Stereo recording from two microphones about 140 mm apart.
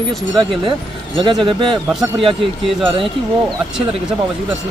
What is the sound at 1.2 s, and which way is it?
Speech, 40° right (ahead or behind).